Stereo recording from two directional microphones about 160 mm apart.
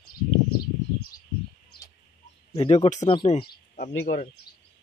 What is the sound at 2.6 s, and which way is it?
Speech, 40° left (ahead or behind).